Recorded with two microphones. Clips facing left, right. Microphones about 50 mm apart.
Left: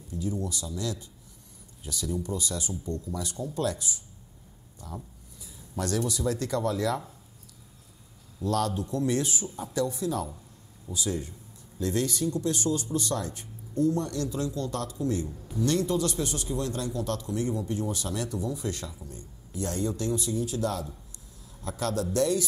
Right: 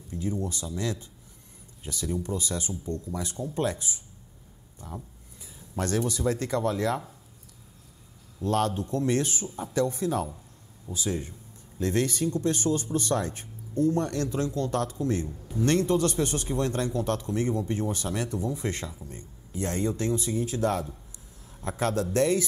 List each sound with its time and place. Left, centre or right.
0.1 s a man's voice: right
8.4 s a man's voice: right